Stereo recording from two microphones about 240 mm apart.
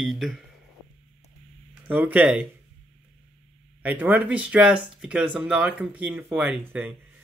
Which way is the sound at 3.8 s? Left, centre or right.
Centre.